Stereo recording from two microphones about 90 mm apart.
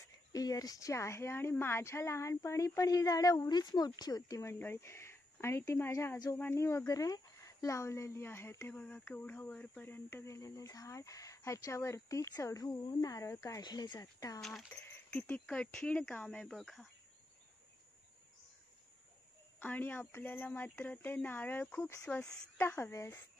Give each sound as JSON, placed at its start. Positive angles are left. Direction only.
{"t": 0.0, "sound": "speech", "side_deg": 40}
{"t": 4.4, "sound": "speech", "side_deg": 30}
{"t": 8.5, "sound": "speech", "side_deg": 15}
{"t": 13.6, "sound": "speech", "side_deg": 50}
{"t": 14.4, "sound": "speech", "side_deg": 5}
{"t": 16.5, "sound": "speech", "side_deg": 0}
{"t": 19.6, "sound": "speech", "side_deg": 20}
{"t": 22.0, "sound": "speech", "side_deg": 15}